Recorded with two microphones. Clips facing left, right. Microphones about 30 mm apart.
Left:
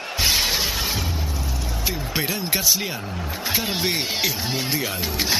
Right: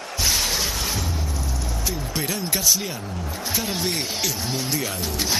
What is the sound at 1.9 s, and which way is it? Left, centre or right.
A man's voice, left.